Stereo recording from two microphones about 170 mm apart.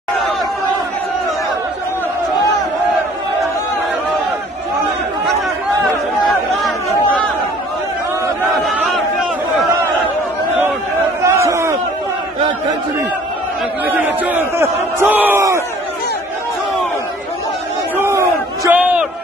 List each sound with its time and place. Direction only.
11.2 s crowd: 15° right (ahead or behind)
13.8 s crowd: 10° right (ahead or behind)
17.9 s battle cry: 15° right (ahead or behind)